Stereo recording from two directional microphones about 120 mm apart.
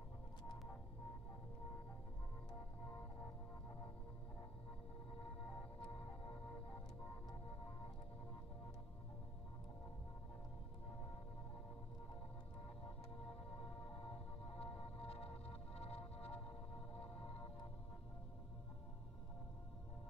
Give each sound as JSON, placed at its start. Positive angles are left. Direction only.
{"t": 14.6, "sound": "music", "side_deg": 55}